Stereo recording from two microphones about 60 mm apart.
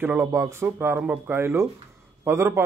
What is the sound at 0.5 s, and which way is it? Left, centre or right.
Speech, right.